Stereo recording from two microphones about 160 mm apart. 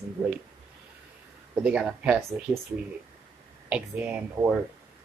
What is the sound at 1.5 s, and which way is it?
Speech, 5° right (ahead or behind).